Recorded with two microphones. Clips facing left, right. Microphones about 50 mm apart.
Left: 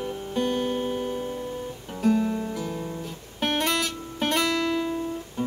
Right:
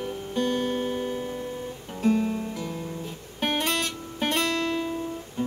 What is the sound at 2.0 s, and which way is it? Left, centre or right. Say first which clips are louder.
Music: left 1 dB; centre.